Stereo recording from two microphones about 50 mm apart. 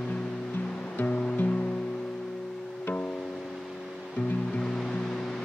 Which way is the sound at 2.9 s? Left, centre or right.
Left.